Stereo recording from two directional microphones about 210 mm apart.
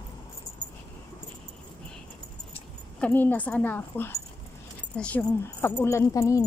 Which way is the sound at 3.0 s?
10° left (ahead or behind).